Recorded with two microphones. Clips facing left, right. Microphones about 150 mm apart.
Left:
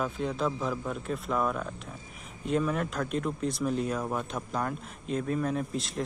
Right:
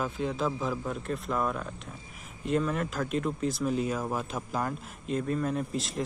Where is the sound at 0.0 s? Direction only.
Centre (ahead or behind).